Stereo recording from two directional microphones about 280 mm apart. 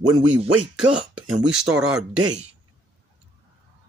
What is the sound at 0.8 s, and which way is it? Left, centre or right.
Speech, centre.